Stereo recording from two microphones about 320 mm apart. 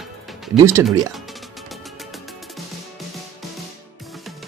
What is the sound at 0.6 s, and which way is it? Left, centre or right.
Speech, centre.